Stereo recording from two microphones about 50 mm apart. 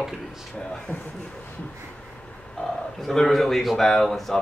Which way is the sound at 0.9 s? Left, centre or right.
Left.